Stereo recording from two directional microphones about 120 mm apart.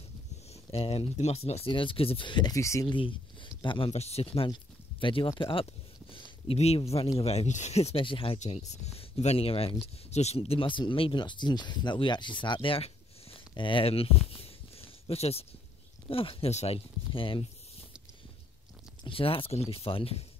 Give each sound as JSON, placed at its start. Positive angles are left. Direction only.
{"t": 0.7, "sound": "speech", "side_deg": 55}
{"t": 1.7, "sound": "speech", "side_deg": 45}
{"t": 2.5, "sound": "speech", "side_deg": 25}
{"t": 2.9, "sound": "speech", "side_deg": 45}
{"t": 3.9, "sound": "speech", "side_deg": 60}
{"t": 8.5, "sound": "speech", "side_deg": 65}
{"t": 19.0, "sound": "speech", "side_deg": 50}